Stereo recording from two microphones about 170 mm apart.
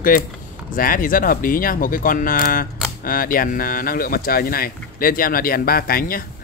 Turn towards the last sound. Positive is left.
turn(degrees=60)  # may be behind; listen again after turning